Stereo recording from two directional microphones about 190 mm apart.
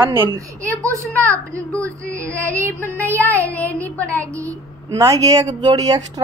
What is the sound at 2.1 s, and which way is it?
Speech, 15° right (ahead or behind).